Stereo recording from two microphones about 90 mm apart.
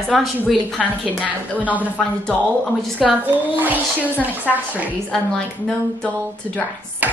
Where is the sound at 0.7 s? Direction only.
15° left (ahead or behind).